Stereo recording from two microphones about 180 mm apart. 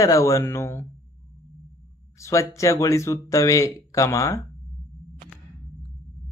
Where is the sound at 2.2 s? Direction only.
15° left (ahead or behind).